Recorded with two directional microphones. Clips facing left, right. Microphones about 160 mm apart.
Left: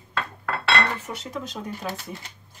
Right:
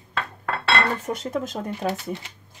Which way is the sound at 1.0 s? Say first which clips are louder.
Right 6 dB; 45° right (ahead or behind).